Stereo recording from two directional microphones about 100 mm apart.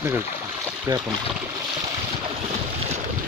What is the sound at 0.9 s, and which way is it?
Speech, 35° right (ahead or behind).